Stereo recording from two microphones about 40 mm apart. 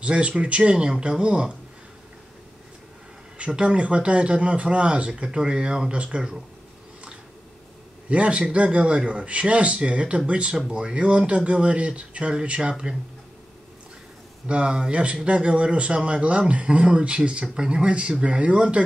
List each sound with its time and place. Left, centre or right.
0.0 s a man's voice: right
3.3 s a man's voice: right
5.2 s a man's voice: right
8.1 s a man's voice: right
14.5 s a man's voice: right